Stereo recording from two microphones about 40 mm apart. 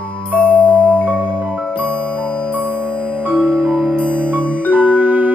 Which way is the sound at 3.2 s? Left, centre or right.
Right.